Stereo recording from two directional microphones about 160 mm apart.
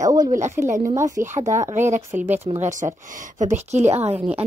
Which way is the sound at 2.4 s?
45° right (ahead or behind).